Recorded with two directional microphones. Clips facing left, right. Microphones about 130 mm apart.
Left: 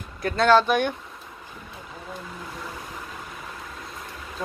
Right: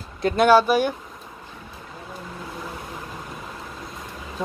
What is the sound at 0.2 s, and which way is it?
Speech, 15° right (ahead or behind).